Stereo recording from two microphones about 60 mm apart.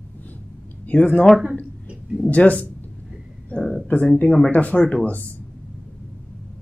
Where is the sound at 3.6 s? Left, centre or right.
Centre.